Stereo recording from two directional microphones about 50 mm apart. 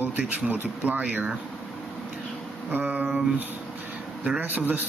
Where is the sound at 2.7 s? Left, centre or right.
Right.